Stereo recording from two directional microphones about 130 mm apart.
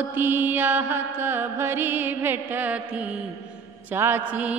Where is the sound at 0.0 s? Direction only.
15° right (ahead or behind).